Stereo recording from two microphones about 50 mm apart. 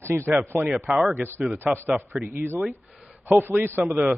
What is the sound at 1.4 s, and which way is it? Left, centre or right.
Speech, centre.